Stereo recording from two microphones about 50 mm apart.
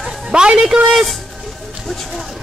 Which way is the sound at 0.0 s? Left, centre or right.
Centre.